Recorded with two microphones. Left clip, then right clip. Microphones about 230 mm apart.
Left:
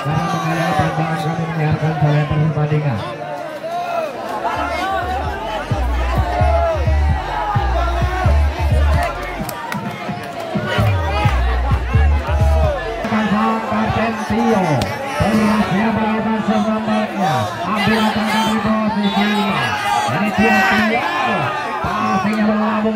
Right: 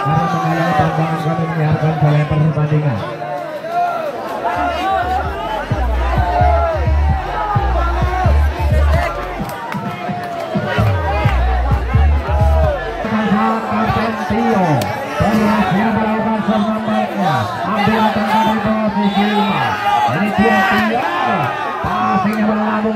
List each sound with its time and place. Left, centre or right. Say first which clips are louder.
0.1 s music: right 3 dB; left
14.5 s music: right 1 dB; left
17.7 s music: right 2 dB; left
19.1 s a sound: right 1 dB; left
22.0 s music: right 4 dB; left